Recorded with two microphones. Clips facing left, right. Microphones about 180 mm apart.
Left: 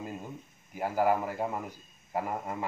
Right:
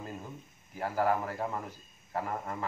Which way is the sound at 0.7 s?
10° left (ahead or behind).